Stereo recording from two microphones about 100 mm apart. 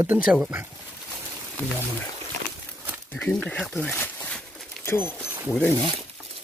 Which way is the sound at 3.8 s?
15° left (ahead or behind).